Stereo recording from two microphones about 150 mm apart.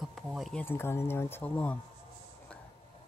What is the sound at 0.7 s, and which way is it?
Speech, 15° left (ahead or behind).